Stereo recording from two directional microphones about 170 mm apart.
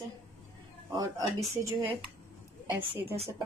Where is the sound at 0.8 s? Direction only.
20° right (ahead or behind).